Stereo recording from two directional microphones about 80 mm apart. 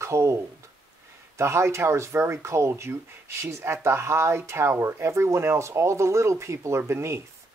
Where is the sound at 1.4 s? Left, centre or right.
Right.